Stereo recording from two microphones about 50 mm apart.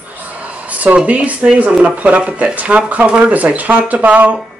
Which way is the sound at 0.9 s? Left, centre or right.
Right.